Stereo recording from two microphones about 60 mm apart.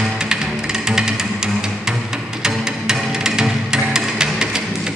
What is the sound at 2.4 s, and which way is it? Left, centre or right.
Music, centre.